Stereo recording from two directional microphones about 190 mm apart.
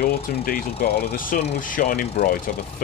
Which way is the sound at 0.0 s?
50° left (ahead or behind).